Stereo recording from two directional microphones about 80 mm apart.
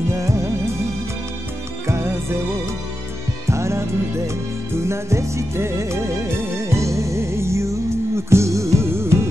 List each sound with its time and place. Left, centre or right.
0.1 s music: right
1.9 s music: right
3.4 s music: right
4.8 s music: right